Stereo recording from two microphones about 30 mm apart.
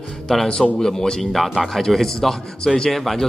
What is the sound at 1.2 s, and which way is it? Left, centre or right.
Speech, centre.